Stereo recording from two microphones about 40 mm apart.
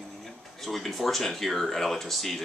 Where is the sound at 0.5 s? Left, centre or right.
Centre.